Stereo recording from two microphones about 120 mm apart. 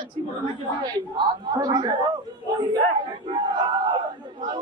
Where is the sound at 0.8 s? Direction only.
35° right (ahead or behind).